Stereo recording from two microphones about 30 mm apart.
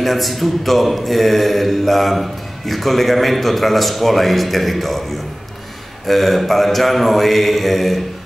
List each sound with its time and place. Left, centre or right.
0.0 s mantra: centre
6.0 s mantra: centre